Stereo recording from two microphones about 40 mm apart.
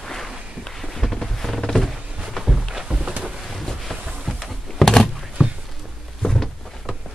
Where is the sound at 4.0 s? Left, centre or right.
Centre.